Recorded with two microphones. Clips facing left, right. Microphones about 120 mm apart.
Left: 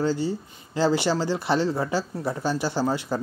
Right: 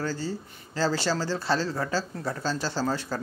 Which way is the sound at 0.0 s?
15° left (ahead or behind).